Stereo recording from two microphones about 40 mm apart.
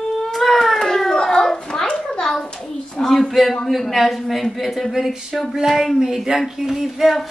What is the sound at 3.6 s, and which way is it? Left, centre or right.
Speech, centre.